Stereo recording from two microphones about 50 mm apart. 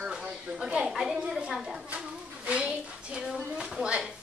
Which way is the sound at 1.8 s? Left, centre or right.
Right.